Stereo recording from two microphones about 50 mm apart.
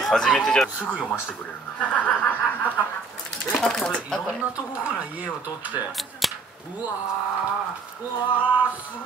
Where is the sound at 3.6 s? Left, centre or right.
Centre.